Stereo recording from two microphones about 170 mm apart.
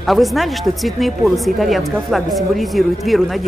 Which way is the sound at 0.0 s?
Centre (ahead or behind).